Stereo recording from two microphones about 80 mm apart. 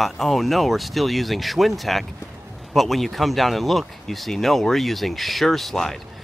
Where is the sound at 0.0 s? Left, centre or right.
Centre.